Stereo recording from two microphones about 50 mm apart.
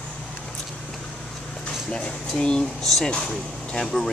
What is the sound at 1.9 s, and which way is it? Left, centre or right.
Speech, centre.